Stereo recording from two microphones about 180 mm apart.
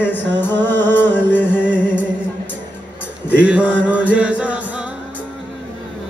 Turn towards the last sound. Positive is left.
turn(degrees=-5)  # may be behind; listen again after turning